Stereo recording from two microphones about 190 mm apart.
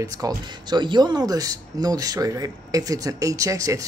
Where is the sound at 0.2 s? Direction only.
20° right (ahead or behind).